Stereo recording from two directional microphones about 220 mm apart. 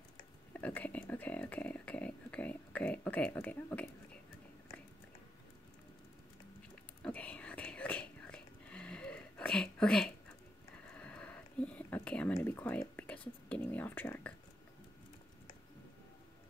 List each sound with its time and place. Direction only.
0.5 s speech: 5° left (ahead or behind)
7.0 s whispering: 5° left (ahead or behind)
11.0 s a sound: 5° left (ahead or behind)
13.5 s speech: 10° left (ahead or behind)